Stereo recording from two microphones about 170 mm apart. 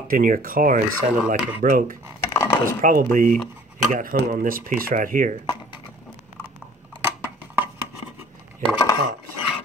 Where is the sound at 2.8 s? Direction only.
55° right (ahead or behind).